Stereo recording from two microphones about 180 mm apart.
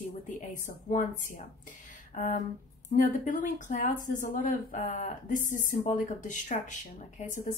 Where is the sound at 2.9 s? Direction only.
45° left (ahead or behind).